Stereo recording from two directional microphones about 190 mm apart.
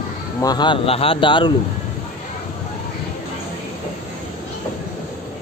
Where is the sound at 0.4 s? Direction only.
20° left (ahead or behind).